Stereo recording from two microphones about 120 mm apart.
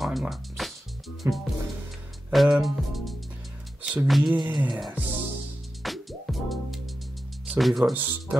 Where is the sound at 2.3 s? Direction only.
Centre (ahead or behind).